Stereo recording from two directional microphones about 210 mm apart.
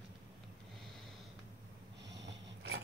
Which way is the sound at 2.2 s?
60° right (ahead or behind).